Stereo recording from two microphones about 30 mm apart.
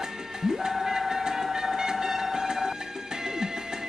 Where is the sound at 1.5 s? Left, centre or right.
Centre.